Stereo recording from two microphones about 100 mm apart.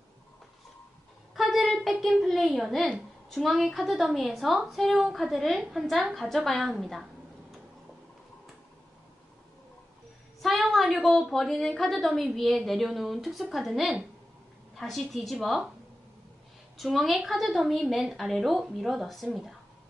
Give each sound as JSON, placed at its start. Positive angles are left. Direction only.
{"t": 1.3, "sound": "a child's voice", "side_deg": 0}
{"t": 10.4, "sound": "a woman's voice", "side_deg": 0}
{"t": 16.7, "sound": "a child's voice", "side_deg": 0}